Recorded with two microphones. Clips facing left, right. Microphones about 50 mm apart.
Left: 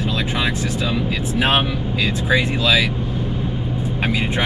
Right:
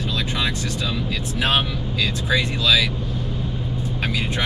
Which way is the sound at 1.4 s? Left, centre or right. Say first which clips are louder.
Left 3 dB; left.